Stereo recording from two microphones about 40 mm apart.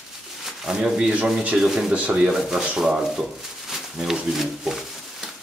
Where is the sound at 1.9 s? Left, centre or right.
Right.